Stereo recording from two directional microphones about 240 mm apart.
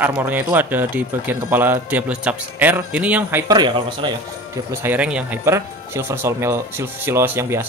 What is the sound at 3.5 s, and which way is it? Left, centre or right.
Speech, centre.